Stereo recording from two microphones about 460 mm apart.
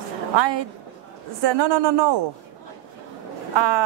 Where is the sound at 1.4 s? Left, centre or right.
Right.